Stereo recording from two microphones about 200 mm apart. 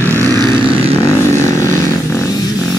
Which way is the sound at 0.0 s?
15° right (ahead or behind).